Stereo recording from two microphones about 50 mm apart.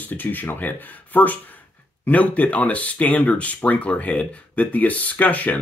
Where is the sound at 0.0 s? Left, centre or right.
Left.